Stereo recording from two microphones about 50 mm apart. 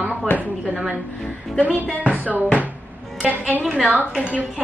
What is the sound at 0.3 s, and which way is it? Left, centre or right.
Speech, left.